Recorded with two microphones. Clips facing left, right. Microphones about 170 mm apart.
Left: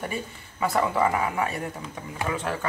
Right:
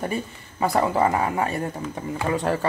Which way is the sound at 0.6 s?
35° right (ahead or behind).